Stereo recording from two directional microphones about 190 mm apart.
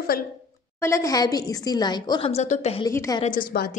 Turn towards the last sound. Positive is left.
turn(degrees=50)  # may be behind; listen again after turning